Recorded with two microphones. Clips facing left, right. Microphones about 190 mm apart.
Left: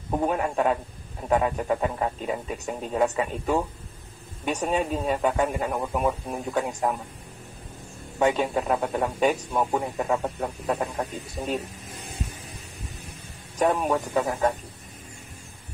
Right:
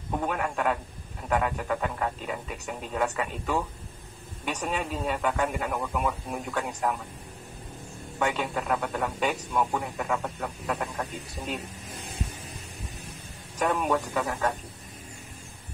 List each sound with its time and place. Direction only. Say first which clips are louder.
0.1 s a man's voice: left 4 dB; 30° left (ahead or behind)
8.2 s a man's voice: left 6 dB; 35° left (ahead or behind)
13.6 s a man's voice: left 3 dB; 35° left (ahead or behind)